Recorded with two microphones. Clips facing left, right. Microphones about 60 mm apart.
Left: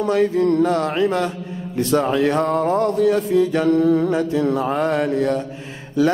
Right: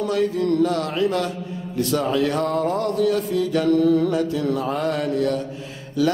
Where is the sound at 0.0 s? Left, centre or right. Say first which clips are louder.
Left 4 dB; left.